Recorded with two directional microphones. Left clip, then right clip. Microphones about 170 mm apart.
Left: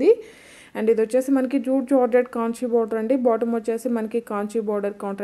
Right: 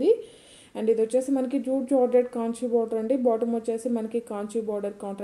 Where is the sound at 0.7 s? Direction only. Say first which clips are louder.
Left 4 dB; 20° left (ahead or behind).